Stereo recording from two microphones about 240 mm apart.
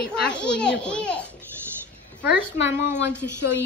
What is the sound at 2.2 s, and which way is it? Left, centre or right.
Speech, centre.